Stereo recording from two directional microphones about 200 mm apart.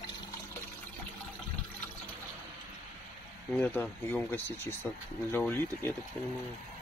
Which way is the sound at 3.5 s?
10° left (ahead or behind).